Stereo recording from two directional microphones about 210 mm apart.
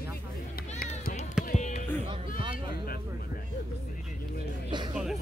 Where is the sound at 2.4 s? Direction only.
25° right (ahead or behind).